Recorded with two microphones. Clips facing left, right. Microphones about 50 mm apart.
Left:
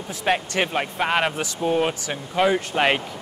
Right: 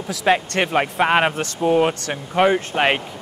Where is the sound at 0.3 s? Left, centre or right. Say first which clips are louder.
Right 4 dB; right.